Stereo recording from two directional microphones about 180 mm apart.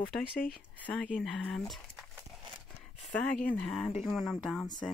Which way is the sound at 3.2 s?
5° left (ahead or behind).